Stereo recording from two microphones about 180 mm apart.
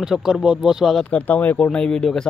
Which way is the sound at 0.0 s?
5° right (ahead or behind).